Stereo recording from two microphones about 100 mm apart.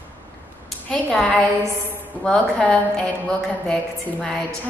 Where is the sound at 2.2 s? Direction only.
10° left (ahead or behind).